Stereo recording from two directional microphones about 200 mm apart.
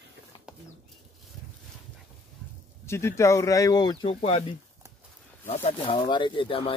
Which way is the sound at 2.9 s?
15° left (ahead or behind).